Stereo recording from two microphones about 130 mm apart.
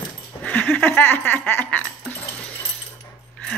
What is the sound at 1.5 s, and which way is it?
Music, 15° left (ahead or behind).